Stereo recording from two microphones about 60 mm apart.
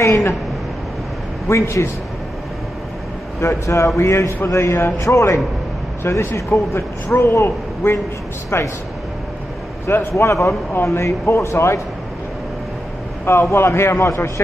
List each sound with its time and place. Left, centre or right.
0.0 s a sound: left
1.5 s speech: left
3.3 s speech: left
4.9 s speech: left
6.0 s a man's voice: left
9.8 s speech: left
13.2 s speech: left